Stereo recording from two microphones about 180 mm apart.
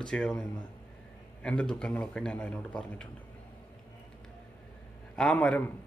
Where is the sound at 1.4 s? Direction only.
5° left (ahead or behind).